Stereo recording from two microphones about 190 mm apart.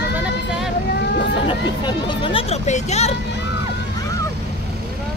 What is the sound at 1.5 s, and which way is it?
Hubbub, 25° left (ahead or behind).